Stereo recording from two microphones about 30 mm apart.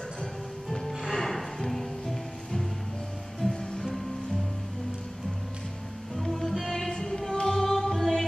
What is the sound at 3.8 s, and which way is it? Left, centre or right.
Music, centre.